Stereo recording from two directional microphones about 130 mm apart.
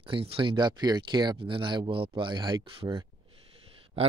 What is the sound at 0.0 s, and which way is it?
Speech, 45° right (ahead or behind).